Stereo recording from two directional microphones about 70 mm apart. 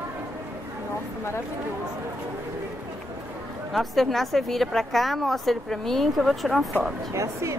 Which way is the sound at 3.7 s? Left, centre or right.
Centre.